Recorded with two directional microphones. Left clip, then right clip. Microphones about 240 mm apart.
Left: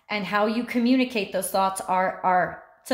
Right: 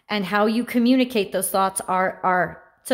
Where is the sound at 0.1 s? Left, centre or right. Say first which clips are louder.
Right 3 dB; right.